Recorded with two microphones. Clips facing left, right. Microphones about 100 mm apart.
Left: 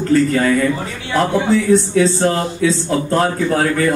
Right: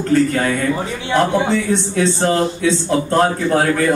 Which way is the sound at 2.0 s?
Centre (ahead or behind).